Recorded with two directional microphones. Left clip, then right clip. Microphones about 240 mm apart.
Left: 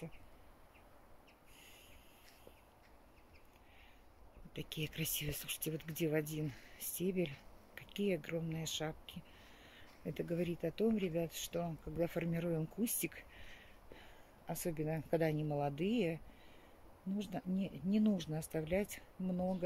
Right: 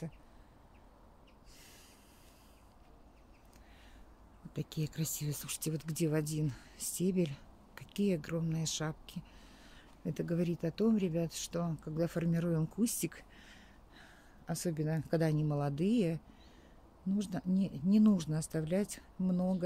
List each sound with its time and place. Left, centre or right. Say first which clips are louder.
4.5 s a sound: right 3 dB; right
5.0 s speech: even; centre
17.2 s speech: right 4 dB; centre